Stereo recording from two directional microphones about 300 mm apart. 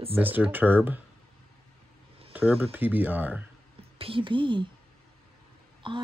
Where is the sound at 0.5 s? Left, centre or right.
Centre.